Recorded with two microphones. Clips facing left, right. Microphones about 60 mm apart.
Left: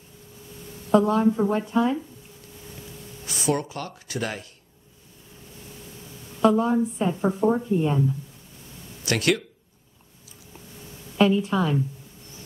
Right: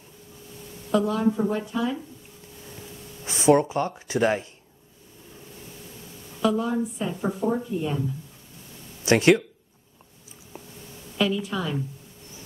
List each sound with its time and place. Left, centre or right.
0.9 s a woman's voice: left
1.2 s speech: centre
1.7 s a woman's voice: left
3.3 s speech: right
6.5 s a woman's voice: left
7.7 s a woman's voice: left
9.0 s speech: right
11.1 s a woman's voice: left